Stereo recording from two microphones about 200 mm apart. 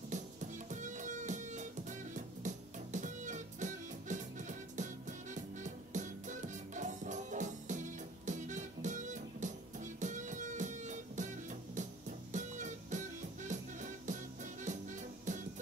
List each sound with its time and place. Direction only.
0.1 s music: 35° right (ahead or behind)